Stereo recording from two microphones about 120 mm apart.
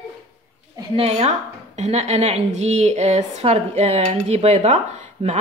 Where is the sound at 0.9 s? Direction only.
55° right (ahead or behind).